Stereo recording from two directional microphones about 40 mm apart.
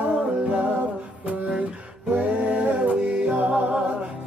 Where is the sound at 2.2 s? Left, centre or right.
Right.